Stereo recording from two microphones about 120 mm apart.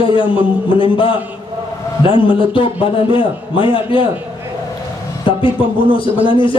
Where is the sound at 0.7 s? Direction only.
45° left (ahead or behind).